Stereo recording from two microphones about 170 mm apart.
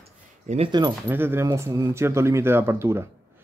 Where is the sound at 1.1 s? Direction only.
15° right (ahead or behind).